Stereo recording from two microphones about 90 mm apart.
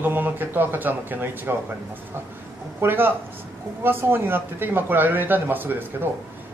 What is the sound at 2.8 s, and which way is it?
Speech, 25° right (ahead or behind).